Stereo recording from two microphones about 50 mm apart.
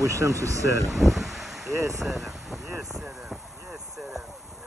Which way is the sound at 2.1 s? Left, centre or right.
Centre.